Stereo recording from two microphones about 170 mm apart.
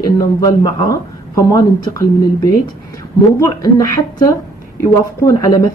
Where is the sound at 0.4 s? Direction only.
25° left (ahead or behind).